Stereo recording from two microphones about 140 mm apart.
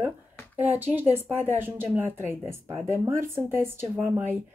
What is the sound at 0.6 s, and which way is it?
Speech, 15° right (ahead or behind).